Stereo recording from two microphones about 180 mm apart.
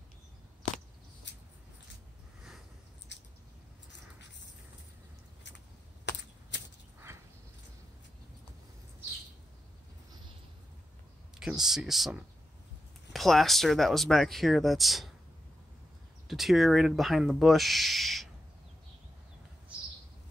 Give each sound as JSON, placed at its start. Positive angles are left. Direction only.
{"t": 1.3, "sound": "mouse", "side_deg": 75}
{"t": 3.1, "sound": "chewing", "side_deg": 75}
{"t": 6.1, "sound": "chop", "side_deg": 75}
{"t": 6.5, "sound": "a sound", "side_deg": 80}
{"t": 7.1, "sound": "a sound", "side_deg": -15}
{"t": 11.3, "sound": "speech", "side_deg": -5}
{"t": 16.3, "sound": "speech", "side_deg": 0}